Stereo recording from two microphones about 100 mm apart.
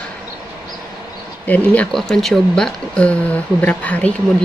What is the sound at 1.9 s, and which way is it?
A woman's voice, 5° left (ahead or behind).